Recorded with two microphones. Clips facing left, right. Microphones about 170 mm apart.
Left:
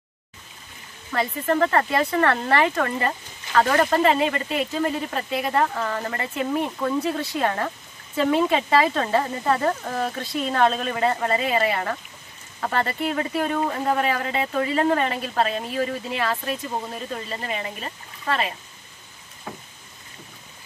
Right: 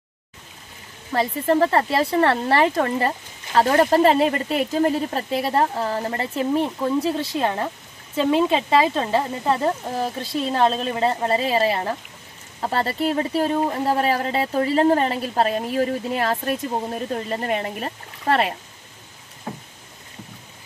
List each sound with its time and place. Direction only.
1.1 s speech: 30° right (ahead or behind); by 18.4 s 50° right (ahead or behind)